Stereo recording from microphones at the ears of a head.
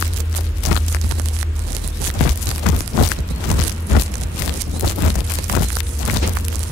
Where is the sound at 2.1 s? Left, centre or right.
Left.